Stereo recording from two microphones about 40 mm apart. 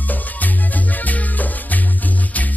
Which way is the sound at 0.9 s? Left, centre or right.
Left.